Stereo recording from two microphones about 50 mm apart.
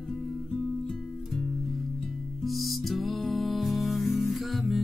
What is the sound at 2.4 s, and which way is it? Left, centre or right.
Music, centre.